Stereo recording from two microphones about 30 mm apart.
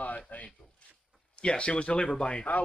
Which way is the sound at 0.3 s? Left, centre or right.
Left.